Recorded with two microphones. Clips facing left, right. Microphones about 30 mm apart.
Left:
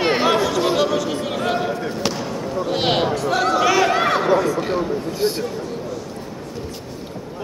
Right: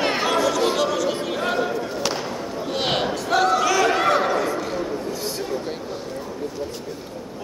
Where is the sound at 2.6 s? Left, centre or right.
Centre.